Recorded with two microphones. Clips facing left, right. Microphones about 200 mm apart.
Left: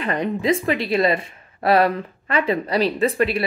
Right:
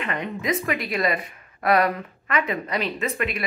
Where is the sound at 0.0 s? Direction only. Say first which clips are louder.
Left 6 dB; 35° left (ahead or behind).